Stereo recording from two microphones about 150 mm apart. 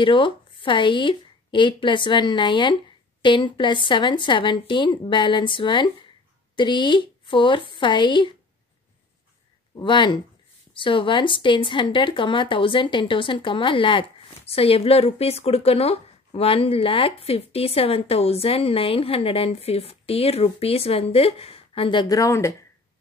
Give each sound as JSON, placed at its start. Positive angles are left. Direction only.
{"t": 0.0, "sound": "speech", "side_deg": 35}
{"t": 9.8, "sound": "speech", "side_deg": 30}